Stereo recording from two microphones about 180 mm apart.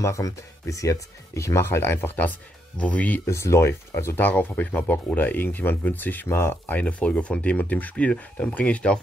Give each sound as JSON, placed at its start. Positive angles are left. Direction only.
{"t": 0.0, "sound": "speech", "side_deg": 15}